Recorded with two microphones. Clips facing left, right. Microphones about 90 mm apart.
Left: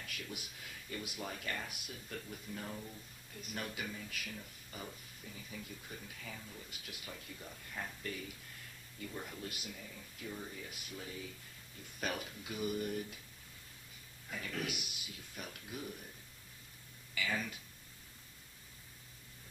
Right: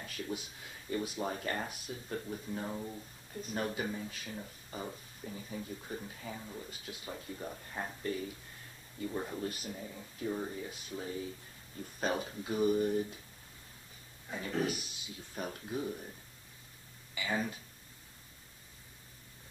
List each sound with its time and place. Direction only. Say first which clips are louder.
0.0 s speech: right 7 dB; 30° right (ahead or behind)
14.3 s speech: right 7 dB; 30° right (ahead or behind)
17.1 s speech: right 3 dB; 25° right (ahead or behind)